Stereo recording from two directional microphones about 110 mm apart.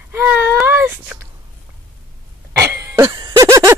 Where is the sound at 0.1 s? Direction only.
15° right (ahead or behind).